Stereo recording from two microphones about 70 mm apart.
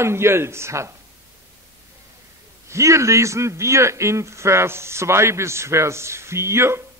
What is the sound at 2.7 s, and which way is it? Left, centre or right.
A man's voice, right.